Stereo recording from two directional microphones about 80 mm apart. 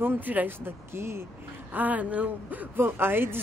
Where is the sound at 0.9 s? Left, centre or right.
Right.